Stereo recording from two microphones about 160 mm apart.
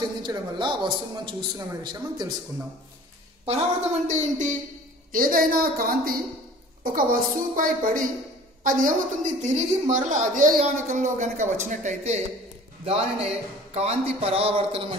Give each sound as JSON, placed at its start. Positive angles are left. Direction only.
{"t": 0.2, "sound": "a man's voice", "side_deg": -30}
{"t": 3.4, "sound": "a woman's voice", "side_deg": -45}
{"t": 5.1, "sound": "a woman's voice", "side_deg": -60}